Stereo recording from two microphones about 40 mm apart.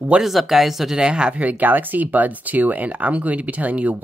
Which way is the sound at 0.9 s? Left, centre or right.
Right.